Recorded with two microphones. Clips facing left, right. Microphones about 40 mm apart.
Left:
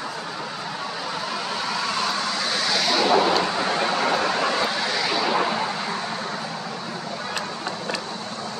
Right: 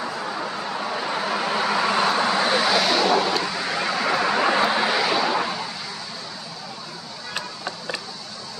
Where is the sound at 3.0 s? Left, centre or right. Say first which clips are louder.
Left 2 dB; centre.